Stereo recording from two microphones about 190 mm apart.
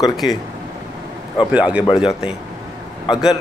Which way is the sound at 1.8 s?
30° left (ahead or behind).